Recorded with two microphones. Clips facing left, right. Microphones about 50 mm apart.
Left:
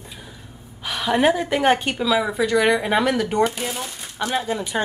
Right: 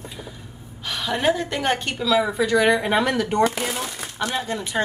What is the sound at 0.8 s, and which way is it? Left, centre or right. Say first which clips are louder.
A woman's voice: left 3 dB; centre.